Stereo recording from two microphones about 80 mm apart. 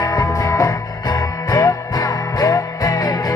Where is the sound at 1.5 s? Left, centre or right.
Left.